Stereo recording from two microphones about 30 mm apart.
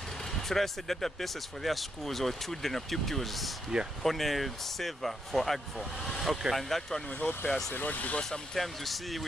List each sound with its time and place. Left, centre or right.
0.3 s speech: centre
7.1 s speech: left
7.7 s speech: left
8.5 s speech: centre